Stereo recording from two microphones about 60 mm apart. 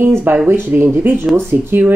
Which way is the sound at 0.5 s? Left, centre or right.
Right.